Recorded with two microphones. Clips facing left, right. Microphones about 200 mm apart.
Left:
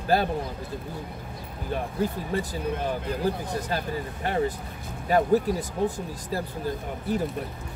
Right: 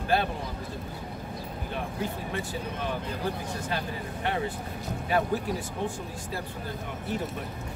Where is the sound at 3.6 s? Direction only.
40° left (ahead or behind).